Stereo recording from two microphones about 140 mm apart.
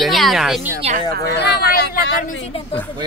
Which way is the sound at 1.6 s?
90° left.